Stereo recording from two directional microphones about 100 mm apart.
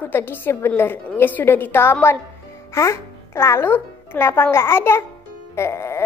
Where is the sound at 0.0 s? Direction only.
20° left (ahead or behind).